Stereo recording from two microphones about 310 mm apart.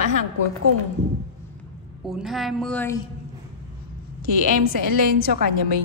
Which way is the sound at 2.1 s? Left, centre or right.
Centre.